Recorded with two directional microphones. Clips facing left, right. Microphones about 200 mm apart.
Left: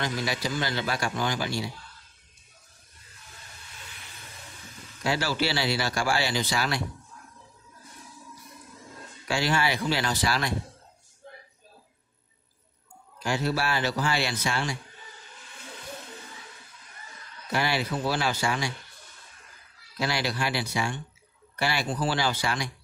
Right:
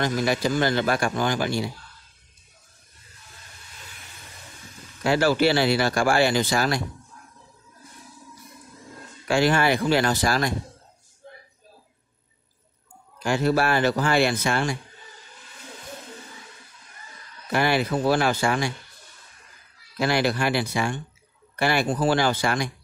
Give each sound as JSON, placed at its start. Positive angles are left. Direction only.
{"t": 0.0, "sound": "speech", "side_deg": -50}
{"t": 5.0, "sound": "speech", "side_deg": -55}
{"t": 9.3, "sound": "speech", "side_deg": -55}
{"t": 13.2, "sound": "speech", "side_deg": -55}
{"t": 17.5, "sound": "speech", "side_deg": -55}
{"t": 20.0, "sound": "speech", "side_deg": -55}